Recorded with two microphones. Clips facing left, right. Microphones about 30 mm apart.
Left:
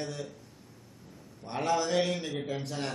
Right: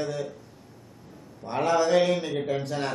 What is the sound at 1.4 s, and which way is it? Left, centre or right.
A man's voice, centre.